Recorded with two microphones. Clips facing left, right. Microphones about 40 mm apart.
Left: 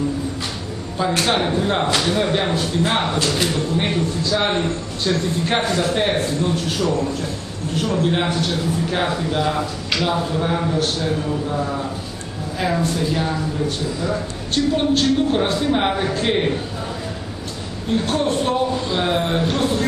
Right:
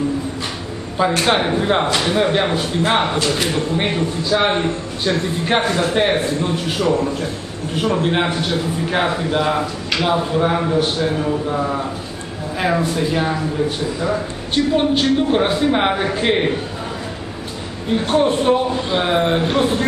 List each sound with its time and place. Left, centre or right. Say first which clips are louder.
1.2 s a man's voice: right 2 dB; centre
17.9 s a man's voice: right 4 dB; centre